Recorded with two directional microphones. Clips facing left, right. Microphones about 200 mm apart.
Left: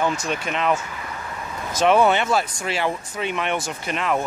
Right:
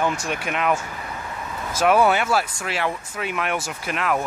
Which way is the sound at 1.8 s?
5° right (ahead or behind).